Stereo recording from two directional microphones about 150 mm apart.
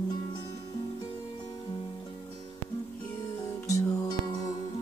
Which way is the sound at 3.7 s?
25° left (ahead or behind).